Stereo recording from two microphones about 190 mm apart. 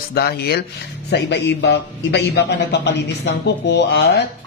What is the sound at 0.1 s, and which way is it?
Speech, 55° left (ahead or behind).